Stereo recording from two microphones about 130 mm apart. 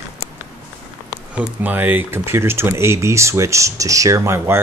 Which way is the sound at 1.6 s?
15° right (ahead or behind).